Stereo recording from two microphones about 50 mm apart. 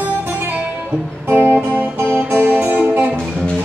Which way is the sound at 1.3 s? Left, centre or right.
Right.